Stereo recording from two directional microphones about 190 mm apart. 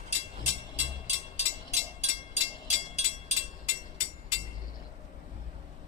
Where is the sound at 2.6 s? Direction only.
35° left (ahead or behind).